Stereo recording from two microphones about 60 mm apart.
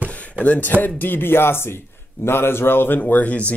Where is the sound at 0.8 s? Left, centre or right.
Left.